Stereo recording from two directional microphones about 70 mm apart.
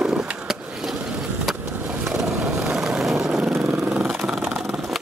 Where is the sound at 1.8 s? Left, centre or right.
Centre.